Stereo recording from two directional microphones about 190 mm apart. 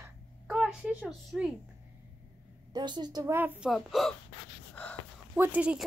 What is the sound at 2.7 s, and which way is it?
A woman's voice, 20° right (ahead or behind).